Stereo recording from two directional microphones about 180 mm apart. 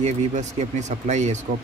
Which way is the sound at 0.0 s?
40° right (ahead or behind).